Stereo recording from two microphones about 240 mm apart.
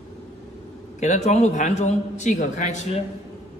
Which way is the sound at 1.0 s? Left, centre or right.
Left.